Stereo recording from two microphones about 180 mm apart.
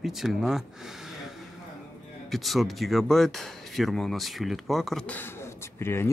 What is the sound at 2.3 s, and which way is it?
Speech, centre (ahead or behind).